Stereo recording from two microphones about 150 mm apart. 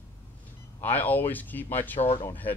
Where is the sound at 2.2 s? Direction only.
10° left (ahead or behind).